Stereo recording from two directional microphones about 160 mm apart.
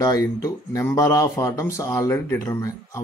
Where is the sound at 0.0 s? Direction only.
20° left (ahead or behind).